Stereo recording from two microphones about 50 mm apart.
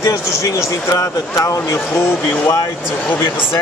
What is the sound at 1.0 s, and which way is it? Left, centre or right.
Speech, left.